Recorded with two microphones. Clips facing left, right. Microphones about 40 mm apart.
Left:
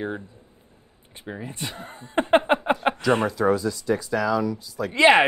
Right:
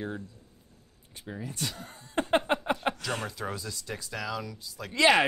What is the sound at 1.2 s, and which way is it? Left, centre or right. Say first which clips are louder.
Speech: left 3 dB; left.